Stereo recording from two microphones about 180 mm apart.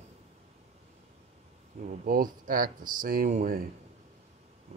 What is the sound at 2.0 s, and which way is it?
Speech, 50° right (ahead or behind).